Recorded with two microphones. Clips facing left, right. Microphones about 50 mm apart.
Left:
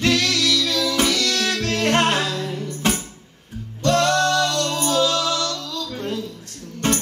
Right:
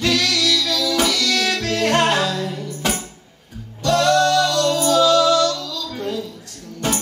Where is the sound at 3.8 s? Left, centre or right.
Left.